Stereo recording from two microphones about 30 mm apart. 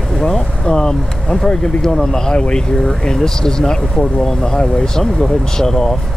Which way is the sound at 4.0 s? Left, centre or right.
Left.